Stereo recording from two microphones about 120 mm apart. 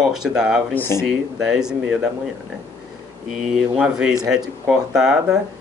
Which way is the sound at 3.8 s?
5° right (ahead or behind).